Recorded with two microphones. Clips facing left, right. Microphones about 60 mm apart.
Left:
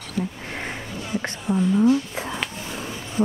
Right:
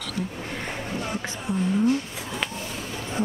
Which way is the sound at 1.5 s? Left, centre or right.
Left.